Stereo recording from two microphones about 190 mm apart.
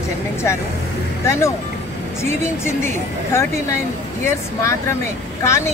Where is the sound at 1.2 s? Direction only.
15° left (ahead or behind).